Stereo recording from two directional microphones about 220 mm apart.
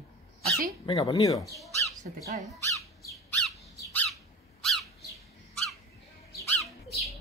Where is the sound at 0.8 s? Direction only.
15° left (ahead or behind).